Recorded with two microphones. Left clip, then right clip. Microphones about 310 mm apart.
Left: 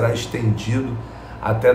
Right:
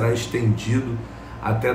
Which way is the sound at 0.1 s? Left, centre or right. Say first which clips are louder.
Even; centre.